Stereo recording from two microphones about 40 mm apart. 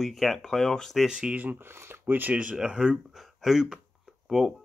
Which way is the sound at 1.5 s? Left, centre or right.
Right.